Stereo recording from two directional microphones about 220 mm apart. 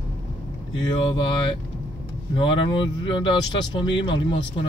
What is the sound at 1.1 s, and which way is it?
Speech, 20° left (ahead or behind).